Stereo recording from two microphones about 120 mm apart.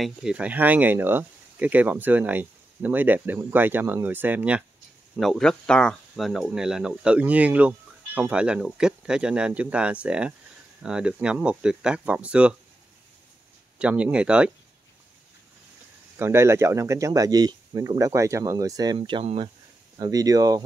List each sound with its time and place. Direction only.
0.0 s speech: 5° right (ahead or behind)
5.2 s speech: centre (ahead or behind)
13.7 s speech: 10° right (ahead or behind)
16.2 s speech: 20° right (ahead or behind)
18.9 s speech: 45° right (ahead or behind)
20.0 s speech: 30° right (ahead or behind)